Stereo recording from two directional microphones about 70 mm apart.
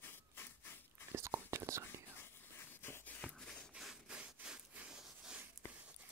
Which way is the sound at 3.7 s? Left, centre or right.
Centre.